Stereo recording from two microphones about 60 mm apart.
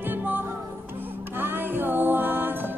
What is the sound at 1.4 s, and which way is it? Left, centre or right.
Music, right.